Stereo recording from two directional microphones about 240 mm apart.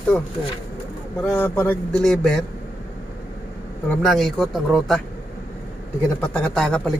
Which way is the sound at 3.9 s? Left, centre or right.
Centre.